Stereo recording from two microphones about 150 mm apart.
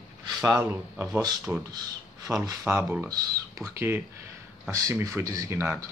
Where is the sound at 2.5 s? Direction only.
15° right (ahead or behind).